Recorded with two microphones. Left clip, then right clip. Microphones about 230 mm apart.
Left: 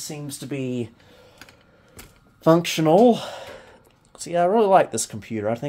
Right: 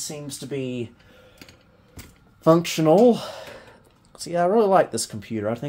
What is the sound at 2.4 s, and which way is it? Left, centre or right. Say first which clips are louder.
Speech: even; centre.